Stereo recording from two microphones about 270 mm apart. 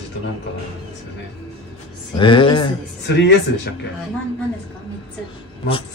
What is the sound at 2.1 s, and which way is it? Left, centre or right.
Speech, centre.